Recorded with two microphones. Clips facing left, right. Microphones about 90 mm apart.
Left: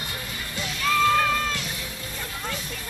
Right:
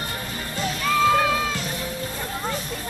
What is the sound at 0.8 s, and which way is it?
Music, 5° right (ahead or behind).